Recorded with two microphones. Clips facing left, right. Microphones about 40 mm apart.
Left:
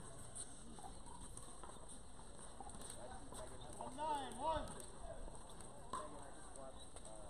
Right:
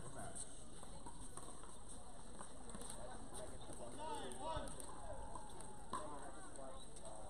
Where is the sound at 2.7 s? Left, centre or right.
Centre.